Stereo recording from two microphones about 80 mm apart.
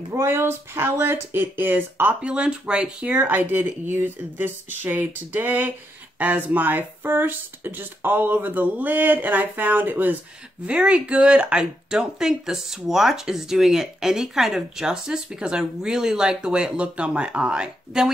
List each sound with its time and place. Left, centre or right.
0.1 s speech: right
2.2 s speech: centre
3.2 s speech: right
10.7 s speech: centre